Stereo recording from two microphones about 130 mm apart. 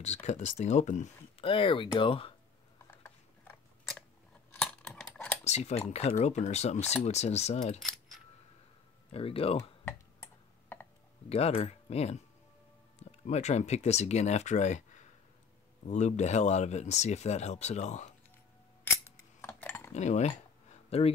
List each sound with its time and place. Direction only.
0.0 s speech: 60° left (ahead or behind)
1.4 s speech: 45° left (ahead or behind)
2.9 s scissors: 10° left (ahead or behind)
4.8 s typing: 5° left (ahead or behind)
5.4 s speech: 60° left (ahead or behind)
9.1 s speech: 45° left (ahead or behind)
9.6 s typing: 20° left (ahead or behind)
11.2 s speech: 50° left (ahead or behind)
19.0 s cutlery: 15° left (ahead or behind)
19.9 s speech: 60° left (ahead or behind)